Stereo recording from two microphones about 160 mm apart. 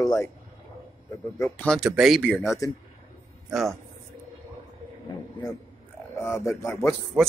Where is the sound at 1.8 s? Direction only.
5° right (ahead or behind).